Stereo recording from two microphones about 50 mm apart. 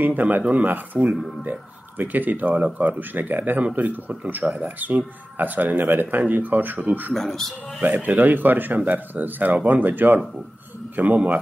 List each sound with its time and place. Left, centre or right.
0.0 s speech: right
7.2 s speech: centre
7.8 s speech: right